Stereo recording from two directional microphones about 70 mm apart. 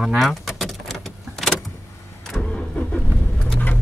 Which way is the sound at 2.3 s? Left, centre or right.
Centre.